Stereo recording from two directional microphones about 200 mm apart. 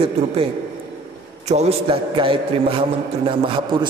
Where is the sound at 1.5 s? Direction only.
30° right (ahead or behind).